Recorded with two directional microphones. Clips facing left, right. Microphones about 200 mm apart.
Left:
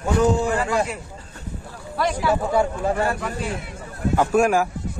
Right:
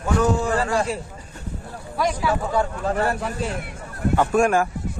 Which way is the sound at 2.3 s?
15° left (ahead or behind).